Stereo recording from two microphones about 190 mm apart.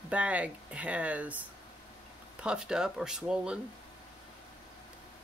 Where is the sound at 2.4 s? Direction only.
5° right (ahead or behind).